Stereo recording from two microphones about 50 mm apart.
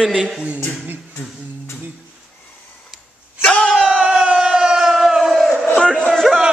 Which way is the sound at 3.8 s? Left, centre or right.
Right.